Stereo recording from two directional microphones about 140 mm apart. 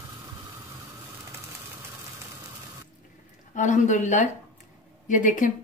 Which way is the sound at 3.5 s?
60° left (ahead or behind).